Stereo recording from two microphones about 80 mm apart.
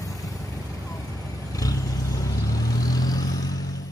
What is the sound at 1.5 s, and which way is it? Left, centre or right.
Vehicle, left.